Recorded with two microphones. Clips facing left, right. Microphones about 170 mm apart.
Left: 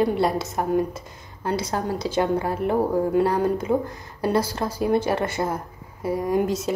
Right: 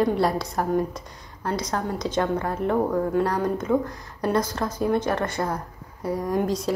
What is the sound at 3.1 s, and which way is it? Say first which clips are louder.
A woman's voice: left 3 dB; 25° left (ahead or behind).